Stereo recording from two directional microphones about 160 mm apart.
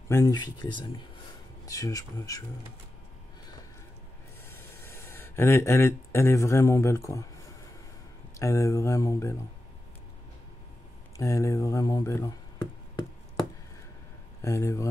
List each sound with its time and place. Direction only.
0.1 s speech: 20° left (ahead or behind)
4.5 s speech: 15° left (ahead or behind)
8.4 s speech: 20° left (ahead or behind)
11.1 s speech: 20° left (ahead or behind)
14.4 s speech: 20° left (ahead or behind)